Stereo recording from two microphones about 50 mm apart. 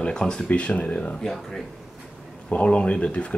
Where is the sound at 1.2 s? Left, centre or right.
Centre.